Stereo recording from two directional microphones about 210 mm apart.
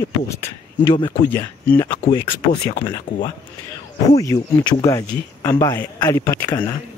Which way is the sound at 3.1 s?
25° left (ahead or behind).